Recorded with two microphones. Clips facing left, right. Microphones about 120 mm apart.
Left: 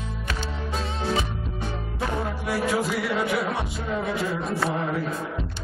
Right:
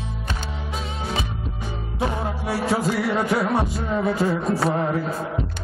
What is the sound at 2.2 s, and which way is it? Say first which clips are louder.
Music: right 2 dB; 30° right (ahead or behind).